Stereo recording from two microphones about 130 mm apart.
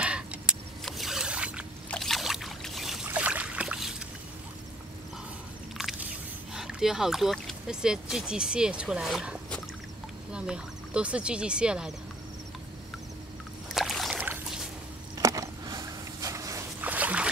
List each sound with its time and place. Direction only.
0.0 s vehicle: 10° right (ahead or behind)
0.8 s zipper: centre (ahead or behind)
1.9 s boat: 5° left (ahead or behind)
5.8 s biting: centre (ahead or behind)
6.5 s speech: 5° right (ahead or behind)
13.7 s rowboat: centre (ahead or behind)
14.1 s boat: 10° right (ahead or behind)
15.1 s a sound: 25° right (ahead or behind)
16.8 s boat: 10° right (ahead or behind)